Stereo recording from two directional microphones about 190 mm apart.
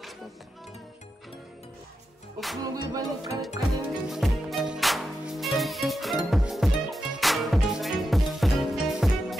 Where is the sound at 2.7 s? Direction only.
20° right (ahead or behind).